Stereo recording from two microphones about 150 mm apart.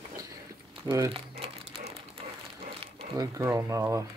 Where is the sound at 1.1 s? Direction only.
40° right (ahead or behind).